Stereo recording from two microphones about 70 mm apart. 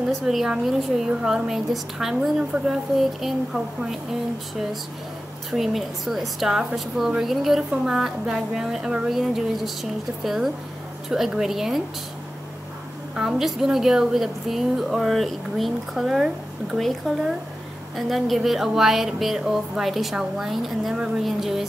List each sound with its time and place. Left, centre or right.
0.3 s a woman's voice: centre
13.1 s a woman's voice: centre